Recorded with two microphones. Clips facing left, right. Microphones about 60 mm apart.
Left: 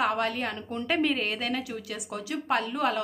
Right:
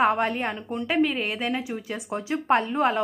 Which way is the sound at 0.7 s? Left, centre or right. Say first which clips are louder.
Right 3 dB; centre.